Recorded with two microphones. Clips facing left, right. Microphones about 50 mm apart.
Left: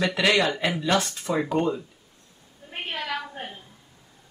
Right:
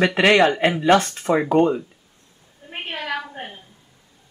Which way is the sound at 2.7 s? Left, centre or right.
Right.